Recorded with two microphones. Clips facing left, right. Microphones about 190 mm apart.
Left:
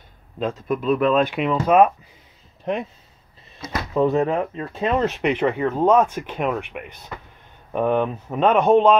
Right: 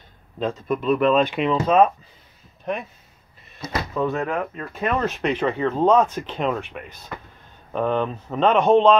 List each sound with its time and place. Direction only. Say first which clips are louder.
0.4 s speech: even; 5° left (ahead or behind)
3.9 s speech: left 6 dB; 30° left (ahead or behind); by 8.9 s 10° left (ahead or behind)